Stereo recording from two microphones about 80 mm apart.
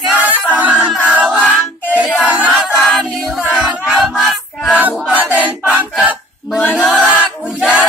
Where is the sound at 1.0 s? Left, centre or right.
Centre.